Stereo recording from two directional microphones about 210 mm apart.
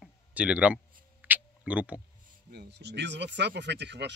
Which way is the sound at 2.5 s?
55° right (ahead or behind).